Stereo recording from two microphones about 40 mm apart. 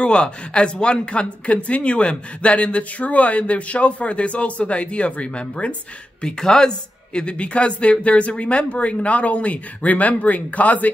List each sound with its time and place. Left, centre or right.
0.0 s speech: left
6.2 s speech: centre
7.2 s speech: left